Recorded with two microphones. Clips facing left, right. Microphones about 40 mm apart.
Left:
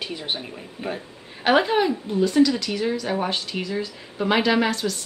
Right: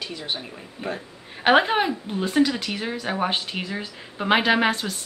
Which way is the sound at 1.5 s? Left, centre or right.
Right.